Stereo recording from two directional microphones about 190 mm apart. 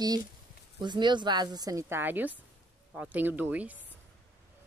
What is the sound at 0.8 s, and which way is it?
Speech, 25° right (ahead or behind).